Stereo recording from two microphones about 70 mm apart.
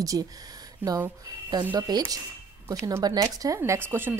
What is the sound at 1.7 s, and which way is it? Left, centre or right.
Speech, right.